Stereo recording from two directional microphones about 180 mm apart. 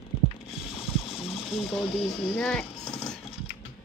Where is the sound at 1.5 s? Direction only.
30° left (ahead or behind).